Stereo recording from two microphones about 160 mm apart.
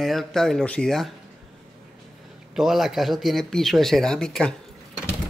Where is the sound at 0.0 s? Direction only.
Centre (ahead or behind).